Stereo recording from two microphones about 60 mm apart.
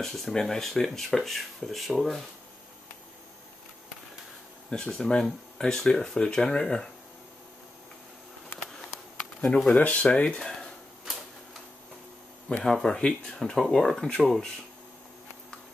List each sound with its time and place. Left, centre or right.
0.0 s speech: centre
4.6 s speech: centre
9.8 s speech: left
12.4 s speech: centre